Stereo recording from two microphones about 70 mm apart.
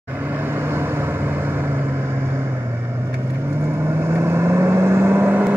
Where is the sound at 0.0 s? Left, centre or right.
Right.